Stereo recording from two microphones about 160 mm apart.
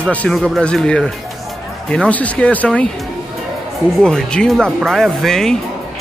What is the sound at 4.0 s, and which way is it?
Speech, 5° left (ahead or behind).